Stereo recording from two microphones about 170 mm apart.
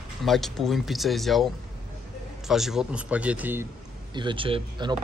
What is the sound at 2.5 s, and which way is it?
A man's voice, centre (ahead or behind).